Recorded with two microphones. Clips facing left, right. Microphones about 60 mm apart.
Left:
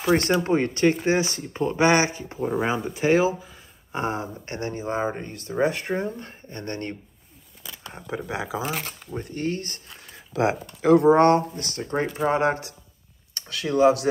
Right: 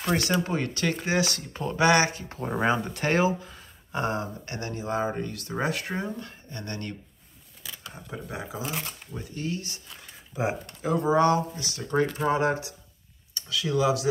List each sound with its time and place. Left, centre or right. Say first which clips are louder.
0.4 s speech: left 7 dB; left
2.4 s speech: left 1 dB; centre
3.9 s speech: left 1 dB; left
7.9 s speech: left 7 dB; left
9.2 s speech: left 4 dB; left
10.3 s speech: left 6 dB; left
11.8 s speech: left 1 dB; left